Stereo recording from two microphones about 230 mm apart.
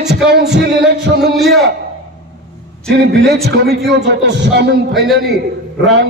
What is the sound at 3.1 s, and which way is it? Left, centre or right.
A man's voice, right.